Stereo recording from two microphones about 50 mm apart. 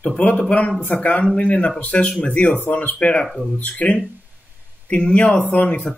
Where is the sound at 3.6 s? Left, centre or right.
Left.